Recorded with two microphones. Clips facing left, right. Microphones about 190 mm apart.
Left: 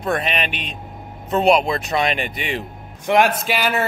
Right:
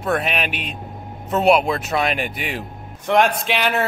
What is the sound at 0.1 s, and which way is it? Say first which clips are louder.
A man's voice: right 1 dB; 5° right (ahead or behind).